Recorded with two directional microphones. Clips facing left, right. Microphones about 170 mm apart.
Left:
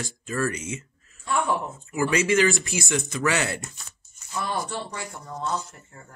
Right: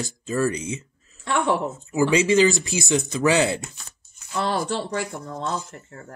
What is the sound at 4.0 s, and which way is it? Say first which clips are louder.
Speech: right 5 dB; 90° right.